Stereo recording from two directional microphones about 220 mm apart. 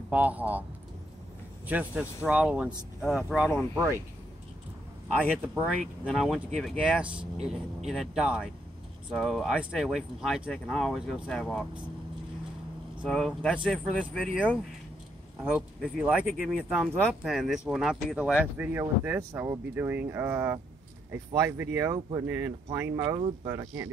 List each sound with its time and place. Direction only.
0.1 s speech: 5° right (ahead or behind)
1.7 s speech: 5° right (ahead or behind)
5.4 s speech: 5° right (ahead or behind)
13.0 s speech: 5° left (ahead or behind); by 23.9 s 15° right (ahead or behind)